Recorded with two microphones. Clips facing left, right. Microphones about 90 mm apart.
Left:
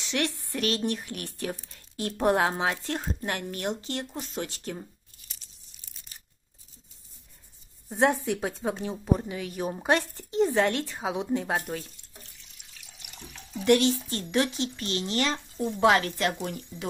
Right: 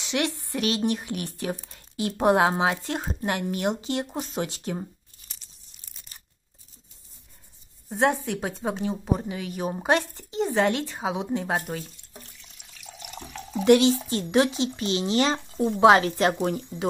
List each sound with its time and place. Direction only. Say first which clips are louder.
0.0 s speech: right 2 dB; 10° right (ahead or behind)
7.9 s speech: right 1 dB; centre (ahead or behind)
12.1 s water tap: right 5 dB; 60° right (ahead or behind)
12.8 s water tap: right 9 dB; 80° right
14.0 s a woman's voice: right 5 dB; 15° right (ahead or behind)
16.7 s speech: right 7 dB; 45° right (ahead or behind)